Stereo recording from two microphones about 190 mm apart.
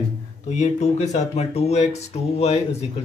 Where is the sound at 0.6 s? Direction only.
35° left (ahead or behind).